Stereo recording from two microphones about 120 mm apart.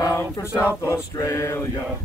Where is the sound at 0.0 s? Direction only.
25° left (ahead or behind).